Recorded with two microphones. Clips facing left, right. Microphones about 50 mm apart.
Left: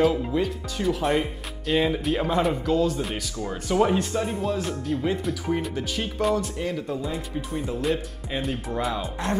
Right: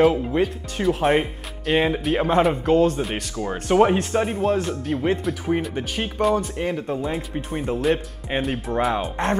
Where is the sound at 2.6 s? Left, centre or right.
Right.